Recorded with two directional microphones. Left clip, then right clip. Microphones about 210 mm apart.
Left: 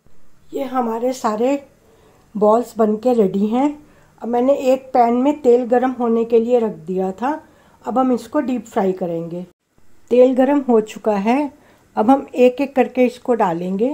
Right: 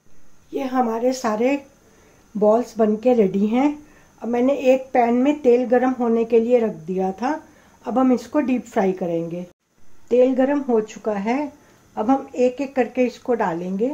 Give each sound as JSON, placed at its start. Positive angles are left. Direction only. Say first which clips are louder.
{"t": 0.5, "sound": "speech", "louder": "left 1 dB", "side_deg": 10}
{"t": 10.0, "sound": "speech", "louder": "left 4 dB", "side_deg": 25}